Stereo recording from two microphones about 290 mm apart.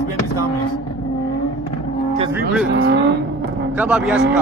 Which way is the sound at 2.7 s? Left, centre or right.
Right.